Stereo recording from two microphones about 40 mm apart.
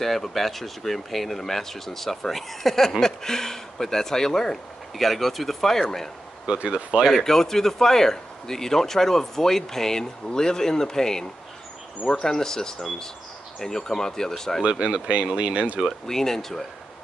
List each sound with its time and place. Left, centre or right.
0.0 s speech: centre
7.1 s speech: centre
14.6 s speech: right
16.1 s speech: centre